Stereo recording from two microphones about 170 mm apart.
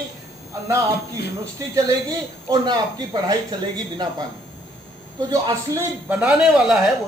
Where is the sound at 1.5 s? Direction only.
20° right (ahead or behind).